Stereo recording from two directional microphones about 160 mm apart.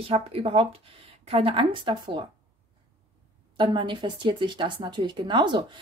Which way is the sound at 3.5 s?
30° right (ahead or behind).